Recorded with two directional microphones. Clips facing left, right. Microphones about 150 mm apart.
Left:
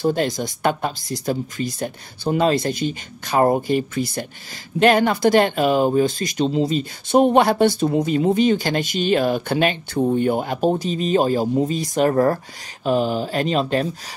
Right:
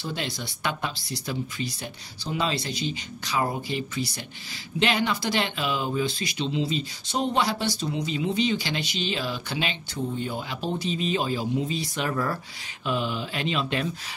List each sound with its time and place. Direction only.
0.0 s speech: 45° left (ahead or behind)